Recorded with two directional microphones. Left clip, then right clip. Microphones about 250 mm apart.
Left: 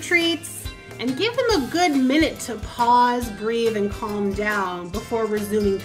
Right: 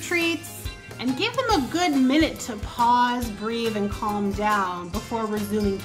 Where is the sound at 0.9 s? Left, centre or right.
Centre.